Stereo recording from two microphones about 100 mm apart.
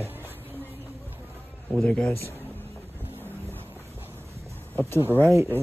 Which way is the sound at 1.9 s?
10° left (ahead or behind).